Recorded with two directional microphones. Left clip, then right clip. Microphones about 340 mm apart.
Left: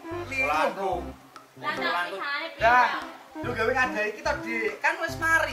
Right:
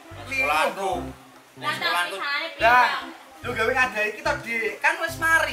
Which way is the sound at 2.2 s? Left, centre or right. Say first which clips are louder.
Right 3 dB; centre.